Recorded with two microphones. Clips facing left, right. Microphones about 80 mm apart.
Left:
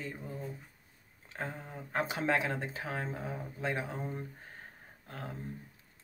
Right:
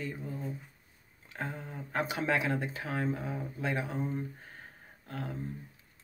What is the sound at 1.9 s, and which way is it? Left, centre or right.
Speech, left.